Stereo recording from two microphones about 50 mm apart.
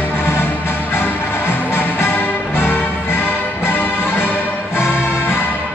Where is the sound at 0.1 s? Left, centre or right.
Left.